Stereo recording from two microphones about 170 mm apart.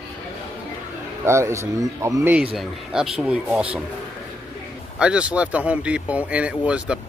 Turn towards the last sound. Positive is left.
turn(degrees=-5)  # may be behind; listen again after turning